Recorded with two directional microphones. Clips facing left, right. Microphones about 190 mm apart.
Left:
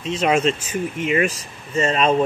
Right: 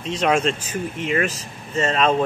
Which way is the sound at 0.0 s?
5° left (ahead or behind).